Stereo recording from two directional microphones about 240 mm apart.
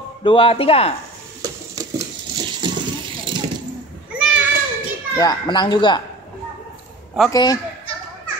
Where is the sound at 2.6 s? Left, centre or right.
Centre.